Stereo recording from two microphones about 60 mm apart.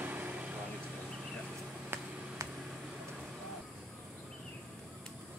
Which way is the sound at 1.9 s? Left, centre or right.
Right.